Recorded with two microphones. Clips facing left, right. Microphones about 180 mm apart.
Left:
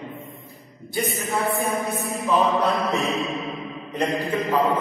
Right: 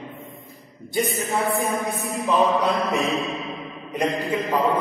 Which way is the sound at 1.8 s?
15° right (ahead or behind).